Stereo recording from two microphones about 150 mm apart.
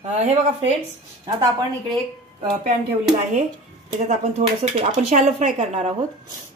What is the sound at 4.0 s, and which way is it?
Speech, 50° right (ahead or behind).